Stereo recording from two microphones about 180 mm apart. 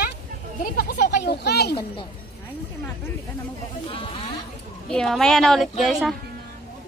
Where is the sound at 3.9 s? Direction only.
30° left (ahead or behind).